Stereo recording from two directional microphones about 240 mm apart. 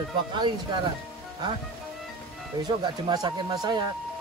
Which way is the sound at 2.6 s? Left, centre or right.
Centre.